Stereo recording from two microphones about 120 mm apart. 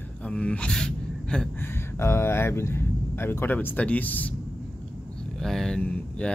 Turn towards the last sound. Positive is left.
turn(degrees=10)  # may be behind; listen again after turning